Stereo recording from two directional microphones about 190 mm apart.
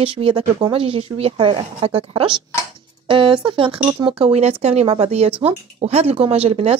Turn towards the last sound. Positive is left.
turn(degrees=-30)  # may be behind; listen again after turning